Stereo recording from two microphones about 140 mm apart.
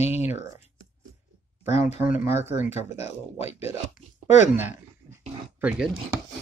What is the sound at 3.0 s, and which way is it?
Speech, 45° left (ahead or behind).